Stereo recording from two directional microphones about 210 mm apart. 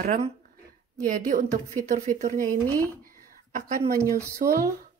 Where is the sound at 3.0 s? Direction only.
40° right (ahead or behind).